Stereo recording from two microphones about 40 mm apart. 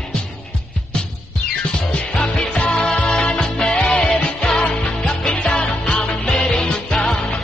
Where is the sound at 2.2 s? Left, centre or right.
Left.